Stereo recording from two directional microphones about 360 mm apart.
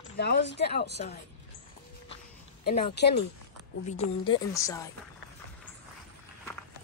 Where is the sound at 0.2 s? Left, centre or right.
Left.